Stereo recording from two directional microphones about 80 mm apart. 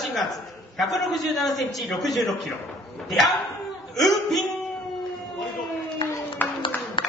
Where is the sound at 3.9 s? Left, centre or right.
Centre.